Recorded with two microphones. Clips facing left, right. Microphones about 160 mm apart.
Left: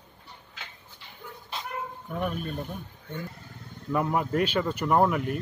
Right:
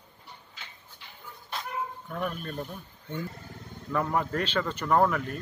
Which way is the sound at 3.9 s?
15° left (ahead or behind).